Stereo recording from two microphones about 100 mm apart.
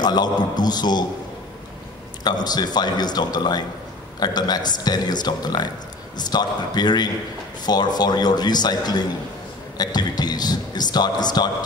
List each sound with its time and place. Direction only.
0.0 s speech: 45° left (ahead or behind)
2.2 s speech: 45° left (ahead or behind)